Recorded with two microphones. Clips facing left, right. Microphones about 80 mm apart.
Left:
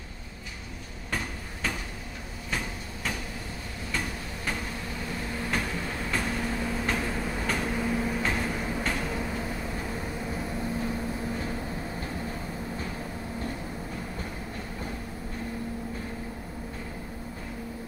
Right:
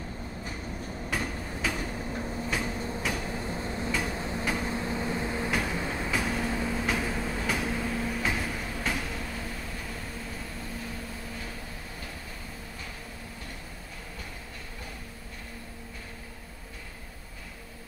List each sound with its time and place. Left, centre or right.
1.1 s train: centre
3.6 s tick-tock: right
4.2 s a sound: right
4.6 s vehicle: right
5.5 s train: centre
7.4 s vehicle: centre
7.7 s train: centre
8.2 s vehicle: centre
8.5 s train: centre
9.0 s vehicle: centre